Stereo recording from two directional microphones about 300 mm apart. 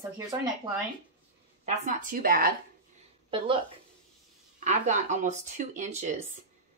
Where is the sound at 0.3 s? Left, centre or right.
Centre.